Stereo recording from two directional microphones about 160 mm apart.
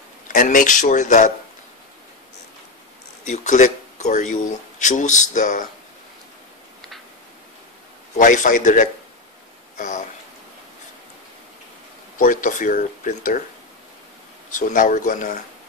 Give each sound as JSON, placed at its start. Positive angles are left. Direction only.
{"t": 0.3, "sound": "speech", "side_deg": 55}
{"t": 3.3, "sound": "speech", "side_deg": 50}
{"t": 8.2, "sound": "speech", "side_deg": 55}
{"t": 12.2, "sound": "speech", "side_deg": 55}
{"t": 14.5, "sound": "speech", "side_deg": 55}